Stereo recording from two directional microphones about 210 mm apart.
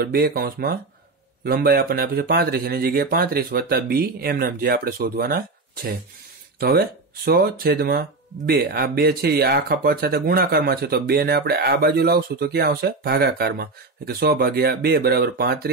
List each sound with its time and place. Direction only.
0.0 s speech: 45° right (ahead or behind)